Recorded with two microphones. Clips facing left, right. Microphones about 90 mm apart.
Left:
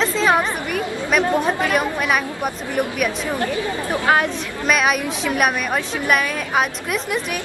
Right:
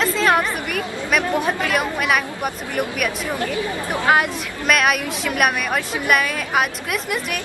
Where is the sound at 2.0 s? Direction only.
Centre (ahead or behind).